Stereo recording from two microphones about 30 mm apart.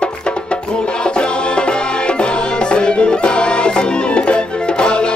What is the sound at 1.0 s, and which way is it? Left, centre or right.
Music, left.